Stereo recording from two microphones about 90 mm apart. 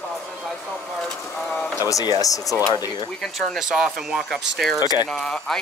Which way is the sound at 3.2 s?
Centre (ahead or behind).